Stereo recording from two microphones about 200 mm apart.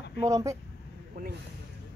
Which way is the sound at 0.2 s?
15° right (ahead or behind).